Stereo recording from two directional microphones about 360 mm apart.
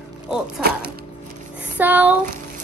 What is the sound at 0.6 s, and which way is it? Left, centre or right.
Speech, right.